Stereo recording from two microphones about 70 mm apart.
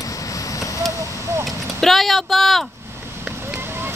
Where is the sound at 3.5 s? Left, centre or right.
Right.